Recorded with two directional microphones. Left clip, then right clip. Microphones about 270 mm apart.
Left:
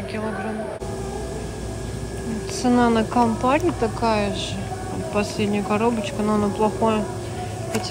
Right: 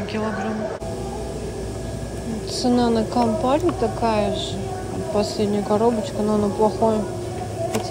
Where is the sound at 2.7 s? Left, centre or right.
Left.